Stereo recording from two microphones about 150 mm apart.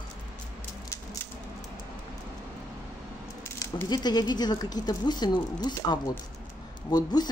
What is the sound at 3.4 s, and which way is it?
Squish, 15° left (ahead or behind).